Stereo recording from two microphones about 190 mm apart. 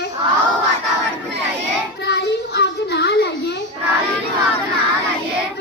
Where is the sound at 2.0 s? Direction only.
60° left (ahead or behind).